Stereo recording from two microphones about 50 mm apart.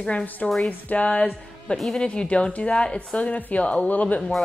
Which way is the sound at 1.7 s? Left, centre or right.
Centre.